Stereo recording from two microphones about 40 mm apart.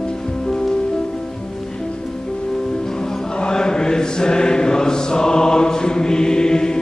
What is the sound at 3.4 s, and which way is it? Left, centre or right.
Chant, centre.